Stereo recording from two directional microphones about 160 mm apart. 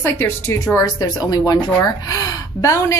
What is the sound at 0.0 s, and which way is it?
Speech, 15° left (ahead or behind).